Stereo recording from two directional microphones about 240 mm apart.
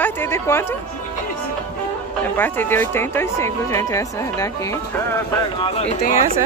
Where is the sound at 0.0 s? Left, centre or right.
Centre.